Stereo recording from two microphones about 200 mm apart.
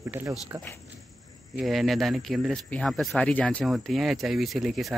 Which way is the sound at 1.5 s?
Centre (ahead or behind).